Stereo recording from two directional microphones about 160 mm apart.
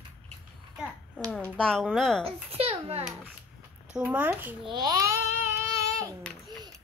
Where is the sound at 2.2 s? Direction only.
35° right (ahead or behind).